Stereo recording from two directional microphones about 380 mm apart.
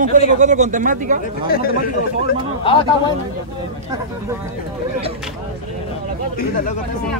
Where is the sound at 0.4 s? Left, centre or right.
Centre.